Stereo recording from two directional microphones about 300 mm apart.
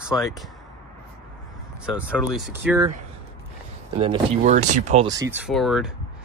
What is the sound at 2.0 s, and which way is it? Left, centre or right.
Speech, centre.